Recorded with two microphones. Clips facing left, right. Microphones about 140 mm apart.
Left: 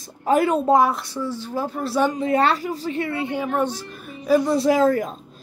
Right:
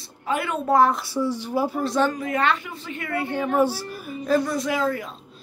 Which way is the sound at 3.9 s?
5° right (ahead or behind).